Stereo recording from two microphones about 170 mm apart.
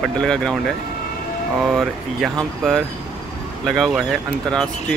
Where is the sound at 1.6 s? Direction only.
Centre (ahead or behind).